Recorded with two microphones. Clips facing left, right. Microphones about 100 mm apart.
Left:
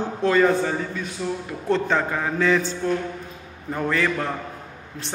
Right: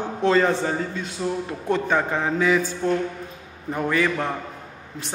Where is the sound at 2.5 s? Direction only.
10° right (ahead or behind).